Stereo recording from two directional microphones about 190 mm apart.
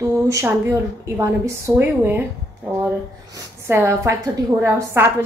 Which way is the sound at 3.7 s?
15° right (ahead or behind).